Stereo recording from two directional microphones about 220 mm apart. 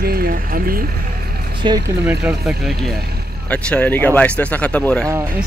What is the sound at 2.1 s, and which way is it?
Speech, centre (ahead or behind).